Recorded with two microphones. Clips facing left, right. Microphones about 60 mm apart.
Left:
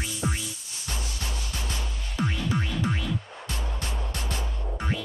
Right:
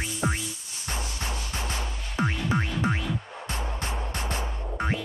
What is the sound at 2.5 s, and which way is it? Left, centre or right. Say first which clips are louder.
Music: right 4 dB; right.